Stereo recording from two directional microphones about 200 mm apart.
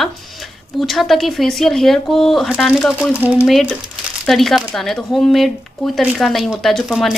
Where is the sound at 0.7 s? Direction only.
Centre (ahead or behind).